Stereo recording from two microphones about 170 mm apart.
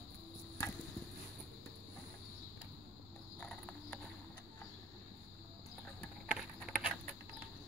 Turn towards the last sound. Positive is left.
turn(degrees=-5)  # may be behind; listen again after turning